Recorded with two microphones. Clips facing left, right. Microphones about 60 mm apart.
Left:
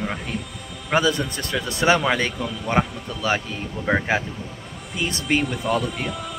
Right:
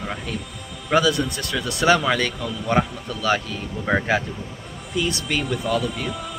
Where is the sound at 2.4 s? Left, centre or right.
Centre.